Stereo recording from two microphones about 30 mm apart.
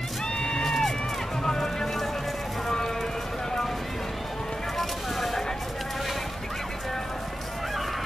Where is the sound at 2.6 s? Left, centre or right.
Centre.